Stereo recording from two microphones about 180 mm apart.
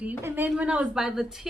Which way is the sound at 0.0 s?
10° right (ahead or behind).